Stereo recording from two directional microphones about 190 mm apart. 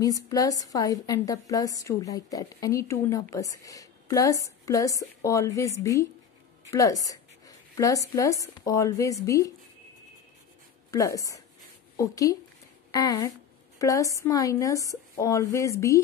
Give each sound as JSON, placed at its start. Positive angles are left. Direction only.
{"t": 0.0, "sound": "a woman's voice", "side_deg": 20}
{"t": 6.7, "sound": "a sound", "side_deg": 15}
{"t": 8.1, "sound": "a woman's voice", "side_deg": 15}
{"t": 10.9, "sound": "a woman's voice", "side_deg": 15}